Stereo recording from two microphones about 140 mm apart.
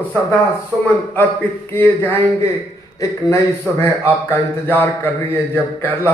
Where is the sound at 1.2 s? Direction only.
15° left (ahead or behind).